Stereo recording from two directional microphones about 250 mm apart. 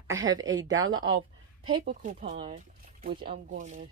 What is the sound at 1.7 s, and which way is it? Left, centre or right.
Speech, right.